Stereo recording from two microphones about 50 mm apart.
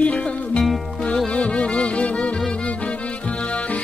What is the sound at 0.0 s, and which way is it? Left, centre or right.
Music, left.